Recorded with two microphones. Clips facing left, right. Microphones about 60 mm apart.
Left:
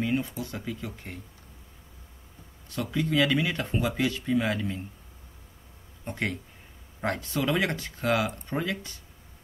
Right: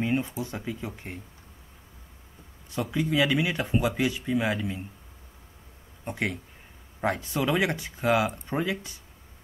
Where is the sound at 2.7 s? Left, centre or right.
Centre.